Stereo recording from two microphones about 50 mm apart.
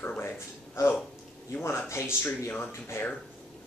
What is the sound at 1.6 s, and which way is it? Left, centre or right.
Speech, left.